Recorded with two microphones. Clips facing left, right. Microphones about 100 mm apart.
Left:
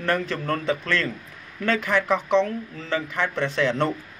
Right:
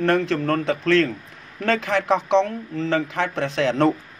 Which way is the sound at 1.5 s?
80° right.